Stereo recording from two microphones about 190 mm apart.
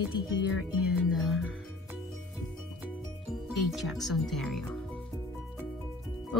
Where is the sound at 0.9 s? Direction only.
Centre (ahead or behind).